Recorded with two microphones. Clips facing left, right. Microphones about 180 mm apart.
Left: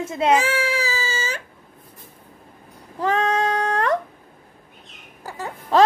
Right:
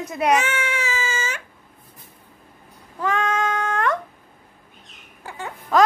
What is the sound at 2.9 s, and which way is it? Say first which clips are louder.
Female singing: left 2 dB; 35° left (ahead or behind).